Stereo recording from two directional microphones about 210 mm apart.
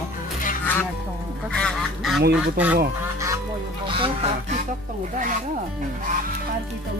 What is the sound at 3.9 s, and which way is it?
Speech, 25° right (ahead or behind).